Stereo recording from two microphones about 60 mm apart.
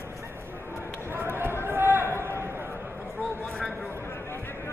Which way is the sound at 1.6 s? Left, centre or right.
Right.